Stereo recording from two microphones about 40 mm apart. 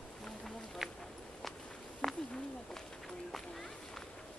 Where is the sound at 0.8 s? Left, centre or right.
Centre.